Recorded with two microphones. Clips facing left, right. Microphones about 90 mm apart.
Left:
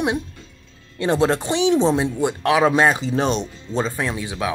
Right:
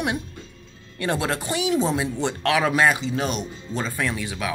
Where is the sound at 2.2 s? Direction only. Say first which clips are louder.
Left 4 dB; 15° left (ahead or behind).